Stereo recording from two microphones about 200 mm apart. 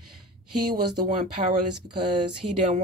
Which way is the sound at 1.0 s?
35° right (ahead or behind).